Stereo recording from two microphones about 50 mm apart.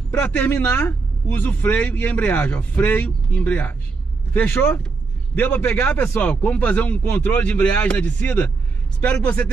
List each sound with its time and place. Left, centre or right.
0.6 s a man's voice: left